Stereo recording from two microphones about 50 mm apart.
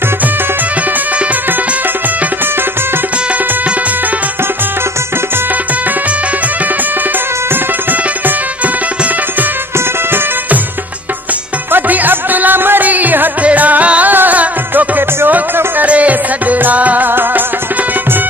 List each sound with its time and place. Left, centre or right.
11.7 s music: right
17.1 s music: right